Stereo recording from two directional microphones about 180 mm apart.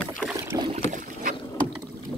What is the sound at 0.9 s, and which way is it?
Boat, 45° right (ahead or behind).